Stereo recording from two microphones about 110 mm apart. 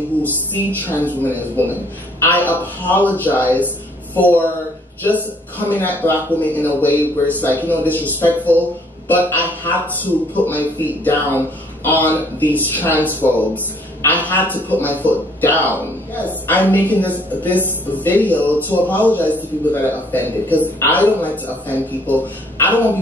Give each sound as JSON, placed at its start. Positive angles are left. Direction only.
{"t": 0.2, "sound": "a man's voice", "side_deg": 15}
{"t": 5.6, "sound": "a man's voice", "side_deg": 15}
{"t": 11.8, "sound": "a man's voice", "side_deg": 15}